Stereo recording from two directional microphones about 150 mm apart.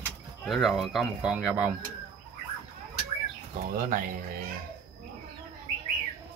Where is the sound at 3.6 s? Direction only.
65° right (ahead or behind).